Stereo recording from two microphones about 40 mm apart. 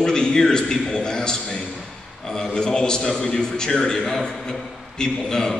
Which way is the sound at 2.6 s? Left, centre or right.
Centre.